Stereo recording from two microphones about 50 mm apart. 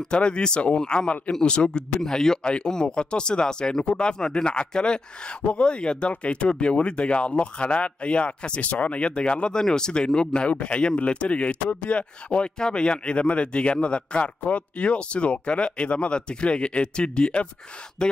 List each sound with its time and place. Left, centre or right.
0.1 s speech: centre